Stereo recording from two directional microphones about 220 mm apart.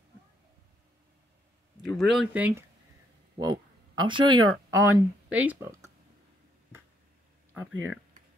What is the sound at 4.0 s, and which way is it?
Speech, 20° right (ahead or behind).